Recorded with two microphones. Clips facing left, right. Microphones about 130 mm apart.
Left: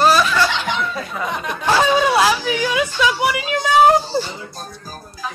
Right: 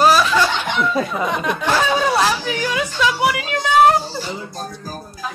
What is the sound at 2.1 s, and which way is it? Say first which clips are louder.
A woman's voice: left 2 dB; 5° left (ahead or behind).